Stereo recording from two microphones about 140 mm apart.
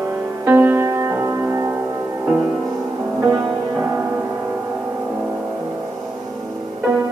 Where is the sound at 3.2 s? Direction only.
20° right (ahead or behind).